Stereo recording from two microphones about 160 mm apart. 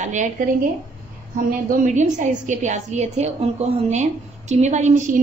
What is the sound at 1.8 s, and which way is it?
A woman's voice, 50° right (ahead or behind).